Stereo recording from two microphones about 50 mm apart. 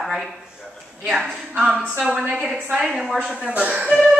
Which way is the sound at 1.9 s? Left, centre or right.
Centre.